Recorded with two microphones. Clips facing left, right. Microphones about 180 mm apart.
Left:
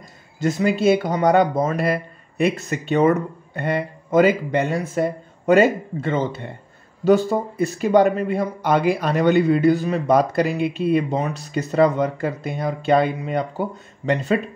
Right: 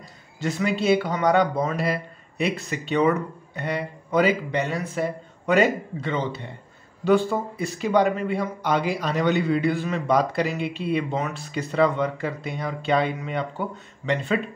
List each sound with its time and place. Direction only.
0.4 s speech: 45° left (ahead or behind)